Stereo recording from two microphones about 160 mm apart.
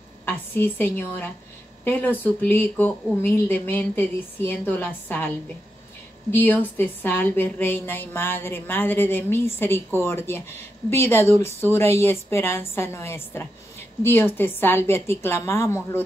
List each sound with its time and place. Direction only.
0.2 s a woman's voice: 15° left (ahead or behind)
6.3 s a woman's voice: 10° left (ahead or behind)